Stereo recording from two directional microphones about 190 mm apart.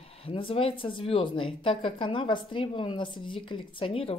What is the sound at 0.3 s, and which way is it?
Speech, 30° left (ahead or behind).